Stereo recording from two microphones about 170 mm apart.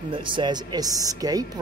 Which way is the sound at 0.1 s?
30° right (ahead or behind).